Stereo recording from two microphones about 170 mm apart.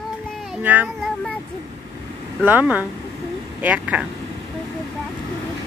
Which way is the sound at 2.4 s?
10° right (ahead or behind).